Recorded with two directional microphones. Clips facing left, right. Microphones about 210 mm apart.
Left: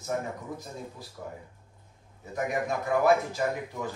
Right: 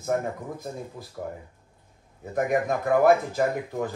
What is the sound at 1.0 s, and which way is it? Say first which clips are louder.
Speech: right 4 dB; 50° right (ahead or behind).